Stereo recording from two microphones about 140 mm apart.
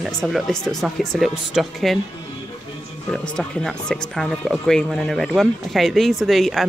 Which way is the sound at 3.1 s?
5° left (ahead or behind).